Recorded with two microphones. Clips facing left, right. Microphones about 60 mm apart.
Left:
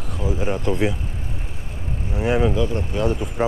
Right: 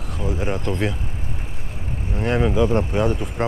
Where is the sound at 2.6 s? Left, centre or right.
Right.